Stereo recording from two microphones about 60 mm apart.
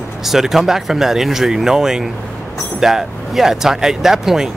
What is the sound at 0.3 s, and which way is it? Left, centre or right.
Speech, centre.